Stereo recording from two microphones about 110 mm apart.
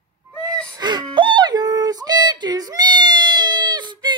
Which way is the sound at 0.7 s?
40° right (ahead or behind).